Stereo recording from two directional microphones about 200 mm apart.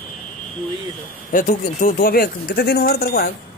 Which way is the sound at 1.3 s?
40° left (ahead or behind).